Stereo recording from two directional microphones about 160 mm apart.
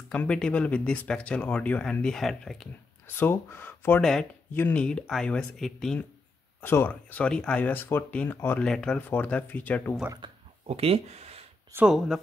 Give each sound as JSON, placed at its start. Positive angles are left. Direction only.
{"t": 0.1, "sound": "speech", "side_deg": 5}
{"t": 3.1, "sound": "speech", "side_deg": 15}
{"t": 4.0, "sound": "speech", "side_deg": 5}
{"t": 6.6, "sound": "speech", "side_deg": 15}
{"t": 10.2, "sound": "a sound", "side_deg": -40}
{"t": 11.7, "sound": "speech", "side_deg": -5}